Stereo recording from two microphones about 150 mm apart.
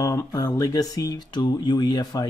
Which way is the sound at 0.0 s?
25° left (ahead or behind).